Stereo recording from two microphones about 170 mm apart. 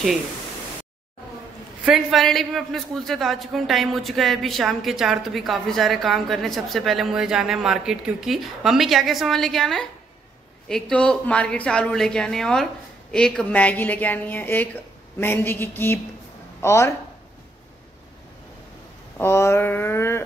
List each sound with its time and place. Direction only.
1.9 s a man's voice: centre (ahead or behind); by 16.9 s 15° left (ahead or behind)
19.1 s a woman's voice: 15° left (ahead or behind)